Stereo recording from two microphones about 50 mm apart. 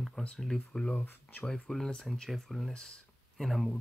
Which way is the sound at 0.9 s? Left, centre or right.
Left.